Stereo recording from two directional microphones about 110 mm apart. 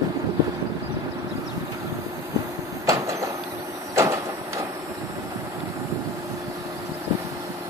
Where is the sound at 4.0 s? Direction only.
25° right (ahead or behind).